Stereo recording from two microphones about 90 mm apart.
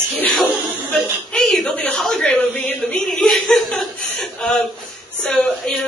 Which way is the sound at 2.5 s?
15° left (ahead or behind).